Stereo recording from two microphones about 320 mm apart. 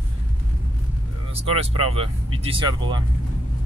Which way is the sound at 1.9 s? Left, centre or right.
Centre.